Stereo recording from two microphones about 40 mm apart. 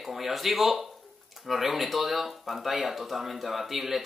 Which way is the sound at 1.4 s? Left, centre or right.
Centre.